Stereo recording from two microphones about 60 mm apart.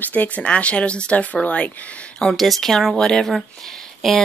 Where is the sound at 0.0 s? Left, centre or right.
Left.